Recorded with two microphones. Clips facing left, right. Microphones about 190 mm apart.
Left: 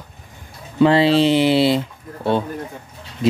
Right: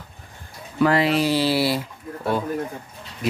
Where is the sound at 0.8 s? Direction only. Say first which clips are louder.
Left 5 dB; 30° left (ahead or behind).